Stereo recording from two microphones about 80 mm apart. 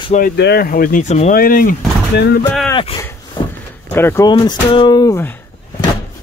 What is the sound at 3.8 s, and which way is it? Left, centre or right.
Speech, left.